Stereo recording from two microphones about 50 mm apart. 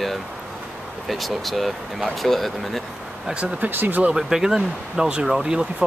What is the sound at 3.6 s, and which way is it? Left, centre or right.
Speech, right.